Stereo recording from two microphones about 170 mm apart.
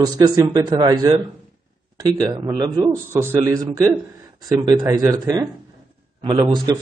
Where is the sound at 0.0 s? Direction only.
20° right (ahead or behind).